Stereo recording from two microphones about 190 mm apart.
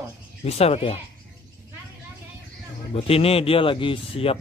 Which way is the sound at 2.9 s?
30° left (ahead or behind).